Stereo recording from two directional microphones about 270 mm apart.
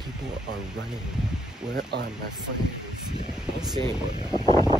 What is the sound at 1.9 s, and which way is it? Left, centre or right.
Speech, right.